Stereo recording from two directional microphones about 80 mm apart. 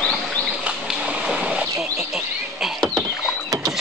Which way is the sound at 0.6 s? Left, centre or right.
Centre.